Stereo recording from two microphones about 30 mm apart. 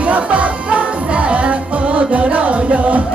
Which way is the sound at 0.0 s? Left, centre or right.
Right.